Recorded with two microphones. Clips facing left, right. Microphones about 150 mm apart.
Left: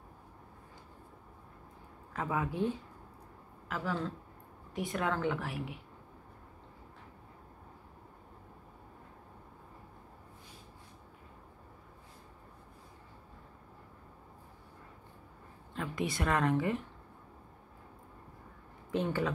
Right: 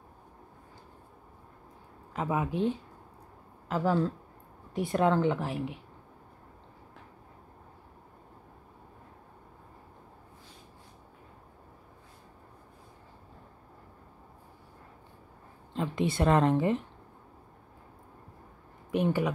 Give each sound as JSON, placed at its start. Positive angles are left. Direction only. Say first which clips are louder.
{"t": 2.1, "sound": "a woman's voice", "louder": "right 4 dB", "side_deg": -20}
{"t": 3.6, "sound": "a woman's voice", "louder": "right 8 dB", "side_deg": -35}
{"t": 15.7, "sound": "a woman's voice", "louder": "right 6 dB", "side_deg": -25}
{"t": 18.9, "sound": "speech", "louder": "right 4 dB", "side_deg": -15}